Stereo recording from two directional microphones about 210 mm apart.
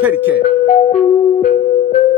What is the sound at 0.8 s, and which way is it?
Music, 35° left (ahead or behind).